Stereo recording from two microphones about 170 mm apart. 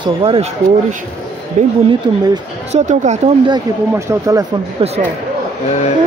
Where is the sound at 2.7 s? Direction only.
45° right (ahead or behind).